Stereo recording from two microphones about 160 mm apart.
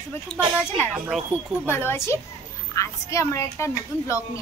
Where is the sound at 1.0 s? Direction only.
10° right (ahead or behind).